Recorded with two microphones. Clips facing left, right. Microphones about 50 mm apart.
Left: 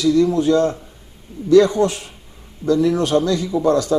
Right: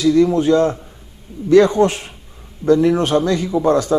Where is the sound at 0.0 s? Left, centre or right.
Right.